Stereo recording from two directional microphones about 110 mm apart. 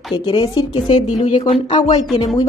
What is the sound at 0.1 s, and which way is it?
Speech, 45° left (ahead or behind).